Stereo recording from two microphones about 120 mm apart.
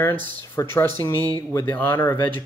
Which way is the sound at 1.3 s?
15° left (ahead or behind).